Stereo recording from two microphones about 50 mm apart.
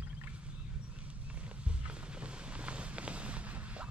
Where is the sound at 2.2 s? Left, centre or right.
Right.